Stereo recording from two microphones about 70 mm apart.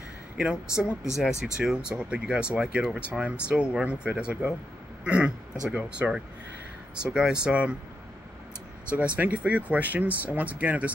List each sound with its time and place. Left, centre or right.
0.4 s speech: centre
8.9 s speech: right